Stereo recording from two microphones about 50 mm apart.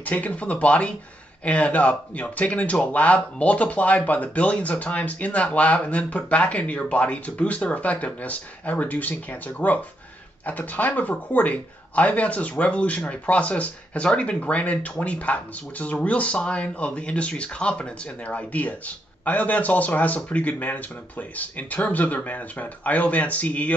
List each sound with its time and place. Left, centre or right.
0.0 s speech: left